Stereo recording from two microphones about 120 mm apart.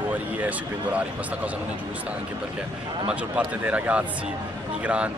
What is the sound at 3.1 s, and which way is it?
Speech, 10° right (ahead or behind).